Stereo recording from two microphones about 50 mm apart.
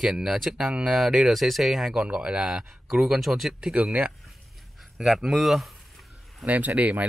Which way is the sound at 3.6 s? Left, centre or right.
Centre.